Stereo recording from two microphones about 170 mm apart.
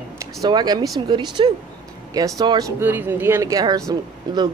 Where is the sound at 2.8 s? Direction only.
10° right (ahead or behind).